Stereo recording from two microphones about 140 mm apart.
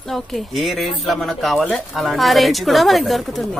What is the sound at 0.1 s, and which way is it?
Speech, centre (ahead or behind).